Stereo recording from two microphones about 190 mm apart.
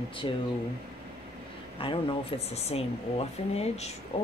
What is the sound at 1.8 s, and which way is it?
Speech, 25° left (ahead or behind).